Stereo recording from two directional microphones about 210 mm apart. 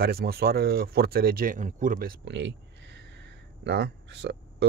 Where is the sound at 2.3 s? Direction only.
60° right (ahead or behind).